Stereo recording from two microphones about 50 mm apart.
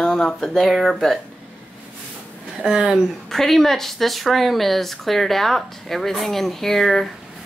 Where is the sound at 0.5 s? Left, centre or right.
Centre.